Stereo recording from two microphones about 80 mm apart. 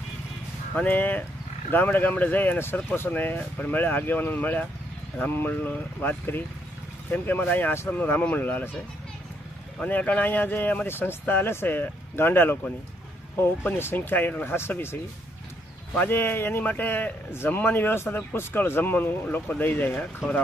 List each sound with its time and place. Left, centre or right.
0.7 s a man's voice: left
9.8 s a man's voice: centre
16.1 s a man's voice: left